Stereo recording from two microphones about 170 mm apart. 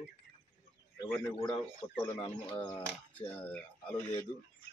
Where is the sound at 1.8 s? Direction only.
25° left (ahead or behind).